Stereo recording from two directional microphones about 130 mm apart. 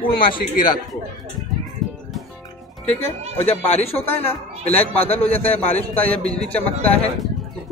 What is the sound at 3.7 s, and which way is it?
Speech, 50° left (ahead or behind).